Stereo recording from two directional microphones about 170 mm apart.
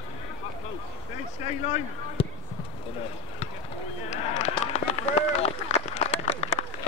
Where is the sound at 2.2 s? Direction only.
35° left (ahead or behind).